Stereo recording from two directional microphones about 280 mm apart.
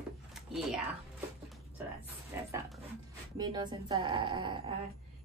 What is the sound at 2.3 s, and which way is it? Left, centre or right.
Speech, centre.